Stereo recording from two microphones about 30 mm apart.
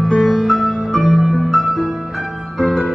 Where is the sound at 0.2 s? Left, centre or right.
Centre.